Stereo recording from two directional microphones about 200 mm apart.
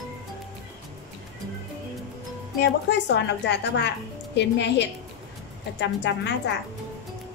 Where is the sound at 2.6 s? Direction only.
60° left (ahead or behind).